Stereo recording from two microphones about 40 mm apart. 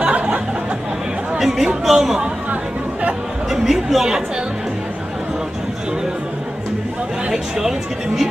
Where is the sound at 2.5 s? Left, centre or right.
Right.